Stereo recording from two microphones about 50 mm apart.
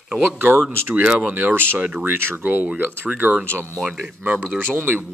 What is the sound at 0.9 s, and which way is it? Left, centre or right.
Speech, right.